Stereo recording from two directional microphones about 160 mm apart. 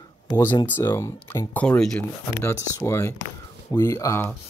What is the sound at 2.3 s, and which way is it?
Speech, 15° left (ahead or behind).